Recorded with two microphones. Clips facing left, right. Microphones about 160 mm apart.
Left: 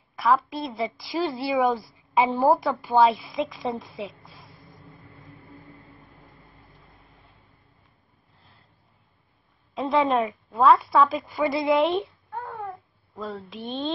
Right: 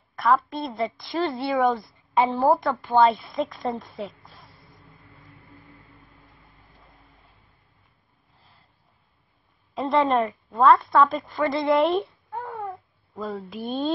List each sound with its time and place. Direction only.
0.1 s a woman's voice: centre (ahead or behind)
5.6 s train: 20° left (ahead or behind)
8.4 s a sound: centre (ahead or behind)
9.8 s a woman's voice: centre (ahead or behind)
12.6 s cat: centre (ahead or behind)